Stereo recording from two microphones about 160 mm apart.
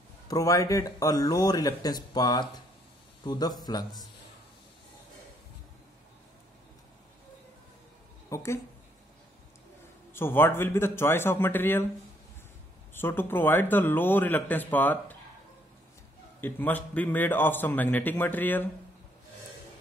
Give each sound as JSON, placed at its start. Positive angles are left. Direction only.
{"t": 0.3, "sound": "speech", "side_deg": 20}
{"t": 8.3, "sound": "a woman's voice", "side_deg": 20}
{"t": 10.1, "sound": "a man's voice", "side_deg": 15}
{"t": 12.9, "sound": "a man's voice", "side_deg": 15}
{"t": 16.3, "sound": "a man's voice", "side_deg": 10}